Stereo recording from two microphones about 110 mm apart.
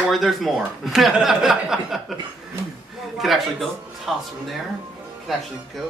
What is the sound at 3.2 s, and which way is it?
A man's voice, centre (ahead or behind).